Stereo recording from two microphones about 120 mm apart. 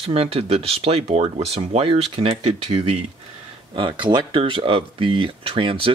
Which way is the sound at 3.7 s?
40° right (ahead or behind).